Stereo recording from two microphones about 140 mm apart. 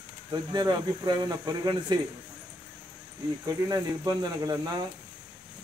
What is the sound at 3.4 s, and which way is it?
Speech, 30° right (ahead or behind).